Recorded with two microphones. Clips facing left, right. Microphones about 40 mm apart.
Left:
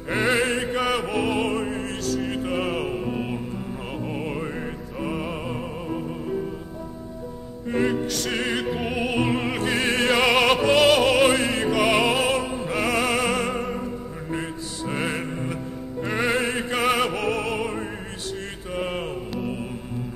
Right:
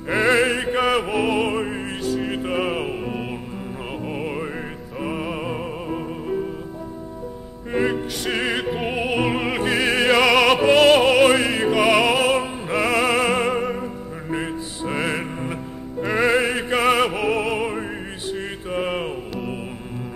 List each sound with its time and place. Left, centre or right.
0.2 s opera: centre
4.0 s music: centre
7.7 s music: centre
13.5 s music: centre
14.3 s music: right